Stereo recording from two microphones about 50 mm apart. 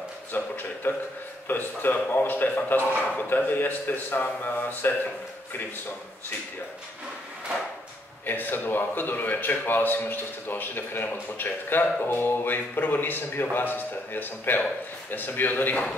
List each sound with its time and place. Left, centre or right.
0.3 s a sound: left
1.5 s speech: left
8.3 s a man's voice: left